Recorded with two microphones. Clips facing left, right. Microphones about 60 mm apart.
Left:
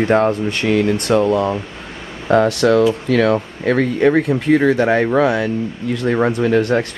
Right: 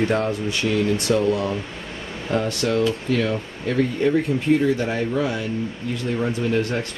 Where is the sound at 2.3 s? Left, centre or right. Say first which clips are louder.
Left 9 dB; left.